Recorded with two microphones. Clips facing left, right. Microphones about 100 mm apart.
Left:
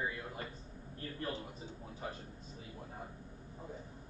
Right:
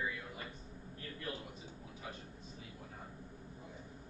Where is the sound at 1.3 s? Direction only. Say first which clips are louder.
Left 2 dB; 35° left (ahead or behind).